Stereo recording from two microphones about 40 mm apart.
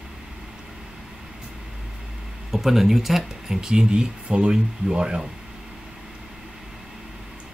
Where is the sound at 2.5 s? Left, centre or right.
Centre.